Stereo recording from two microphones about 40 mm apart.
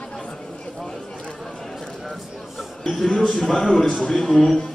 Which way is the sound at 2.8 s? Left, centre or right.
Centre.